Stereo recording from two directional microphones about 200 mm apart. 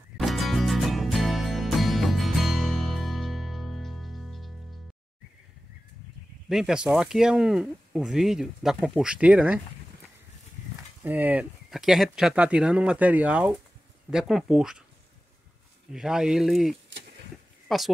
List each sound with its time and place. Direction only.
0.2 s music: centre (ahead or behind)
6.5 s speech: 5° right (ahead or behind)
11.1 s speech: 10° right (ahead or behind)
15.9 s speech: 5° right (ahead or behind)